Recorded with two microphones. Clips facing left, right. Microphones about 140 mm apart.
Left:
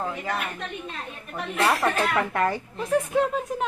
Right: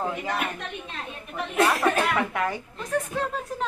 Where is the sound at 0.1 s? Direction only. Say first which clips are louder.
Right 1 dB; 5° right (ahead or behind).